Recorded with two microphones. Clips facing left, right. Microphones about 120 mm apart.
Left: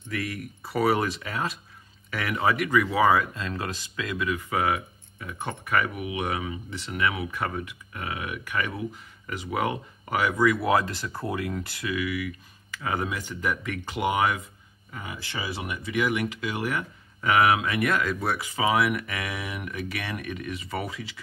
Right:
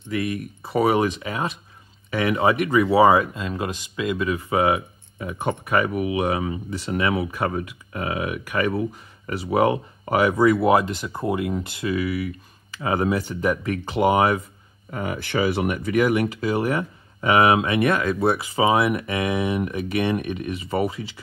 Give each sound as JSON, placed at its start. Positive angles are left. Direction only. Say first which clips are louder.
{"t": 0.1, "sound": "speech", "louder": "right 6 dB", "side_deg": -20}
{"t": 2.0, "sound": "a sound", "louder": "right 8 dB", "side_deg": -20}
{"t": 2.3, "sound": "speech", "louder": "right 3 dB", "side_deg": -25}
{"t": 10.7, "sound": "speech", "louder": "right 5 dB", "side_deg": -20}
{"t": 14.9, "sound": "speech", "louder": "right 10 dB", "side_deg": -55}